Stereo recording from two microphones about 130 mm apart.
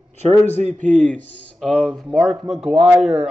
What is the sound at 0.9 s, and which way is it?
Speech, 5° left (ahead or behind).